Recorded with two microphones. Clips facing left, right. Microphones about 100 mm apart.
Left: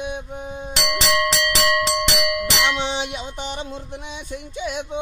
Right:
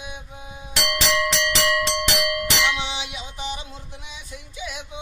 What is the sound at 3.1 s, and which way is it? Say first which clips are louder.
Music: left 3 dB; 50° left (ahead or behind).